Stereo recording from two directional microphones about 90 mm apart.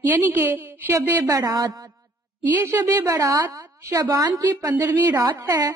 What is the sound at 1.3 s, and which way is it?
Speech, 45° right (ahead or behind).